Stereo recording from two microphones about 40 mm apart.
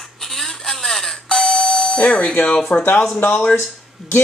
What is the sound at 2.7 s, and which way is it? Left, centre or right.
Speech, left.